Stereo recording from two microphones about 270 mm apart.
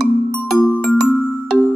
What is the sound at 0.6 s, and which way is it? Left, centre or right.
Music, centre.